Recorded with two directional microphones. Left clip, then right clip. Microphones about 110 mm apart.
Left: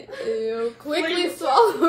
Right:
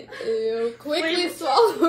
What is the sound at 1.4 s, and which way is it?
Speech, 15° left (ahead or behind).